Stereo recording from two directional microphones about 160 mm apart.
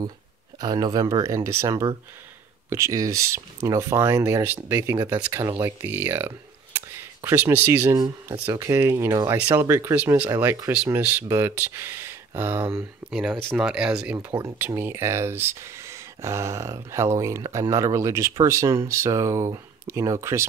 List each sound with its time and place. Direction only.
0.6 s speech: 25° right (ahead or behind); by 14.1 s 5° right (ahead or behind)
14.1 s speech: 20° right (ahead or behind)